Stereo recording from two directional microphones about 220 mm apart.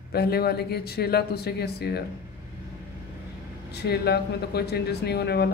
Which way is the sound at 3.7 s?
50° left (ahead or behind).